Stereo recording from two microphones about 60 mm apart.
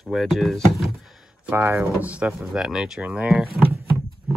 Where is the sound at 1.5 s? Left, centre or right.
Right.